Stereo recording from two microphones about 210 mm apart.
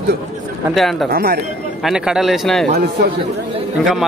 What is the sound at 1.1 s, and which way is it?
Speech, 45° right (ahead or behind).